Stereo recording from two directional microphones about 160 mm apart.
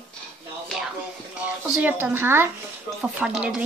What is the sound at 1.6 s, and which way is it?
Speech, 10° right (ahead or behind).